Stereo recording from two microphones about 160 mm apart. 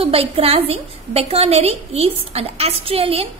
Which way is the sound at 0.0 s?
35° right (ahead or behind).